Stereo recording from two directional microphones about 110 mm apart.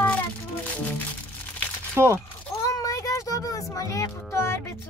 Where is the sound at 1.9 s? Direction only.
25° right (ahead or behind).